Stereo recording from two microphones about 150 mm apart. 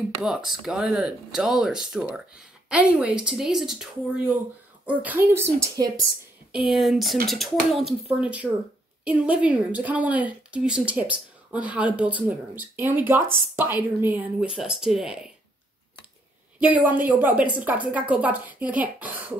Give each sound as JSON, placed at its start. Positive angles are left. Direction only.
{"t": 0.2, "sound": "speech", "side_deg": -5}
{"t": 6.7, "sound": "speech", "side_deg": 0}
{"t": 16.6, "sound": "speech", "side_deg": -10}